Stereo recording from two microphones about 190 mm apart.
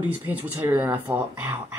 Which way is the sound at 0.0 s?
10° right (ahead or behind).